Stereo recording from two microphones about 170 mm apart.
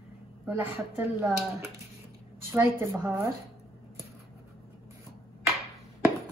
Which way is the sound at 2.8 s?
15° right (ahead or behind).